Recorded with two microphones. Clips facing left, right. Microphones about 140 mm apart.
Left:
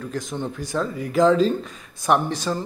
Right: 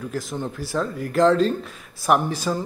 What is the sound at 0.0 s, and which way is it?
A man's voice, 5° right (ahead or behind).